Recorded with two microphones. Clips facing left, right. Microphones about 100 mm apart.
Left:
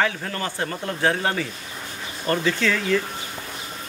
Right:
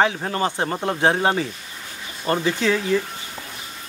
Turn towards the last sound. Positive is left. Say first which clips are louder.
# right 2 dB
turn(degrees=-20)  # may be behind; listen again after turning